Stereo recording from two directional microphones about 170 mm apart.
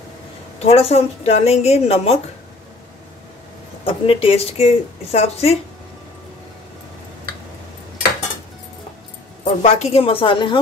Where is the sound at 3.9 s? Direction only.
35° left (ahead or behind).